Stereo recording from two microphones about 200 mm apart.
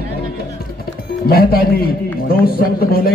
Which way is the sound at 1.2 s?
50° left (ahead or behind).